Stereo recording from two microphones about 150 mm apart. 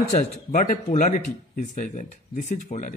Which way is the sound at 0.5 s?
60° left (ahead or behind).